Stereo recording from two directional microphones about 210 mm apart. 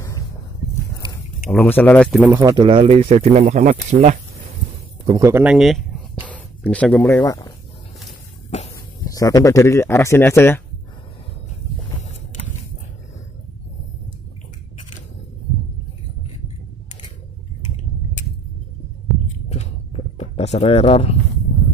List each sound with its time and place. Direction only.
1.5 s speech: 5° left (ahead or behind)
2.3 s speech: 20° right (ahead or behind); by 4.2 s 35° right (ahead or behind)
5.0 s speech: 15° right (ahead or behind); by 7.5 s 20° left (ahead or behind)
8.5 s a sound: 30° left (ahead or behind)
9.1 s speech: 15° left (ahead or behind)
19.5 s a sound: 30° left (ahead or behind)